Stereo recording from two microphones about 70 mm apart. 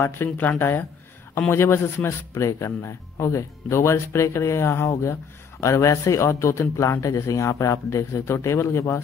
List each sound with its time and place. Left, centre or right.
0.2 s speech: left
2.3 s speech: left